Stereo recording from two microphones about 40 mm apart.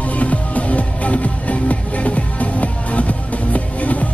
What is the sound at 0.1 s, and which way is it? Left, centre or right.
Music, left.